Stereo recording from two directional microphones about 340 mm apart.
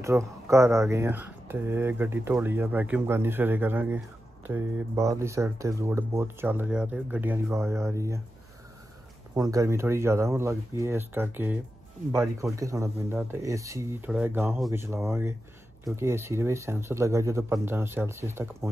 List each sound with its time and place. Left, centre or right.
0.0 s speech: centre
9.3 s speech: centre